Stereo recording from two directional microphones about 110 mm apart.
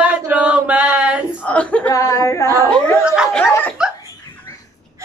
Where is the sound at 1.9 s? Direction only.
30° left (ahead or behind).